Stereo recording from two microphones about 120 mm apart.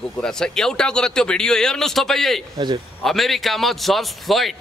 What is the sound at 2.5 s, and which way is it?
Speech, 40° right (ahead or behind).